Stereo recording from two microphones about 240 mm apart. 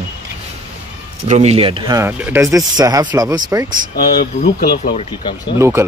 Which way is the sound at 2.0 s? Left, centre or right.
Centre.